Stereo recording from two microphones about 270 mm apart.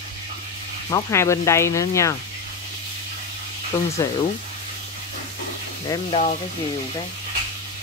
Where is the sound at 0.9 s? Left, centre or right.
Centre.